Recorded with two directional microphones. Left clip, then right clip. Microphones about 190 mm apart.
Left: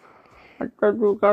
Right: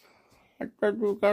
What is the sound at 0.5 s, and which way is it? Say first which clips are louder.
Speech: left 7 dB; 10° left (ahead or behind).